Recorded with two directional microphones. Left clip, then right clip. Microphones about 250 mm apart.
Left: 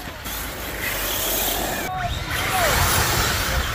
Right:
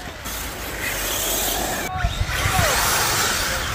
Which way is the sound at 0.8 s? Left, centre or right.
Centre.